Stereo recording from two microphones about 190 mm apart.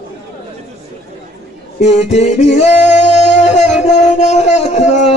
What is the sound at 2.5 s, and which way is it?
Singing, 35° left (ahead or behind).